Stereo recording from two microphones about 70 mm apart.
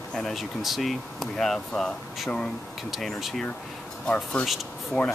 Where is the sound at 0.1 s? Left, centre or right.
Centre.